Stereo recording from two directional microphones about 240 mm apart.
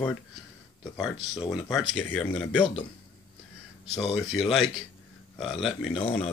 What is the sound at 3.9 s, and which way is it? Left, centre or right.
Speech, centre.